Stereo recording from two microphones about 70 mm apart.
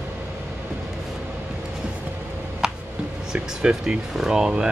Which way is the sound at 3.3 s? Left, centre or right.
Centre.